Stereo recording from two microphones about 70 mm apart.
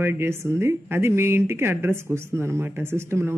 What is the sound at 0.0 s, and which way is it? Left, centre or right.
Speech, right.